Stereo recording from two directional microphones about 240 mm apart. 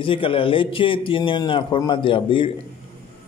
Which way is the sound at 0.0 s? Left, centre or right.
Left.